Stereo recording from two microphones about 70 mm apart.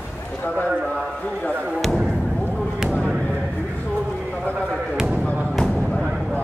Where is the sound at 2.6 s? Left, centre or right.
Centre.